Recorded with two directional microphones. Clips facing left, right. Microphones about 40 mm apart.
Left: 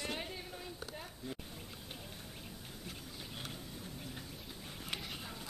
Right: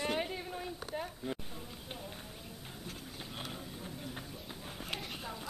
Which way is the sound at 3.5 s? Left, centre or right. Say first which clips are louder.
Right 3 dB; right.